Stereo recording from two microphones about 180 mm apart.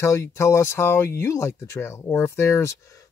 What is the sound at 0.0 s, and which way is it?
Speech, 15° left (ahead or behind).